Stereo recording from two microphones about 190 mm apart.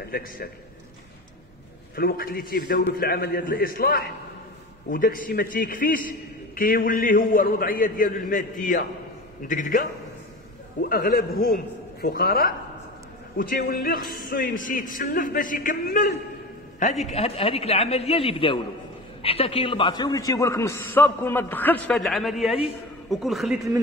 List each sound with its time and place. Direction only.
2.0 s a man's voice: 50° left (ahead or behind)
17.1 s a man's voice: 30° left (ahead or behind); by 23.7 s centre (ahead or behind)